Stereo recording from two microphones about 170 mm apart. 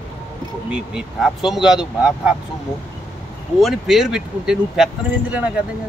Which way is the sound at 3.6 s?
Centre (ahead or behind).